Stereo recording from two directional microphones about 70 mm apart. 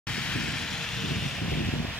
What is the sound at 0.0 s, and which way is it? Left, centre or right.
Vehicle, centre.